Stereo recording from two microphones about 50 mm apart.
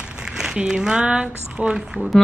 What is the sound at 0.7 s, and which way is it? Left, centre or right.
Speech, centre.